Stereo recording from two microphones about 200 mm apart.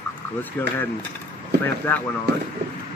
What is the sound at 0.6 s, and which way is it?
Speech, 10° left (ahead or behind).